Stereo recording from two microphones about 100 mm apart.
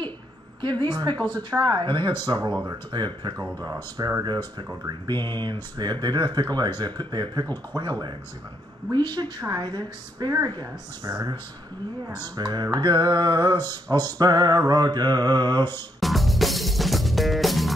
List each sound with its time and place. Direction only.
0.6 s a woman's voice: 45° right (ahead or behind)
3.3 s a woman's voice: 35° right (ahead or behind)
12.4 s a woman's voice: 45° right (ahead or behind)
16.0 s music: centre (ahead or behind)